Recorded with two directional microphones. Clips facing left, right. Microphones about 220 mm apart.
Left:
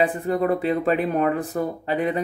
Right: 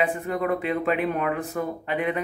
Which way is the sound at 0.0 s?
35° left (ahead or behind).